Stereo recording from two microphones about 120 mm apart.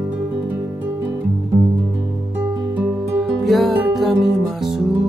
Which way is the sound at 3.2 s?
Centre (ahead or behind).